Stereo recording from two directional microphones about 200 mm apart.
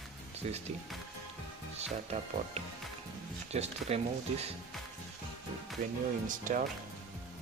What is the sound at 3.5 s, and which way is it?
Speech, 30° right (ahead or behind).